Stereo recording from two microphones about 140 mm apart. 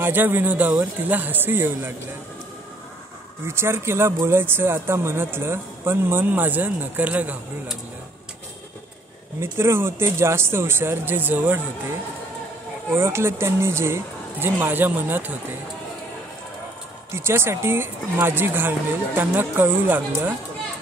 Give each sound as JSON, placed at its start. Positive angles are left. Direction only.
{"t": 0.0, "sound": "speech", "side_deg": -15}
{"t": 3.4, "sound": "speech", "side_deg": -15}
{"t": 9.4, "sound": "speech", "side_deg": -20}
{"t": 12.9, "sound": "speech", "side_deg": -20}
{"t": 17.1, "sound": "speech", "side_deg": -20}